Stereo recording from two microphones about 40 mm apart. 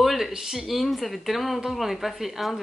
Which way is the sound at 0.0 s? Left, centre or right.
Centre.